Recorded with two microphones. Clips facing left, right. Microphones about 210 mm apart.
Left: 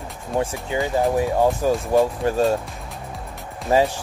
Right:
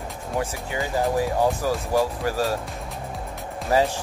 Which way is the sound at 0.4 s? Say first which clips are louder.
Left 5 dB; 25° left (ahead or behind).